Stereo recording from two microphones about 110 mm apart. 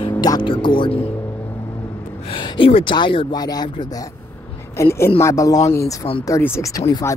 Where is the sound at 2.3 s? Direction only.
50° left (ahead or behind).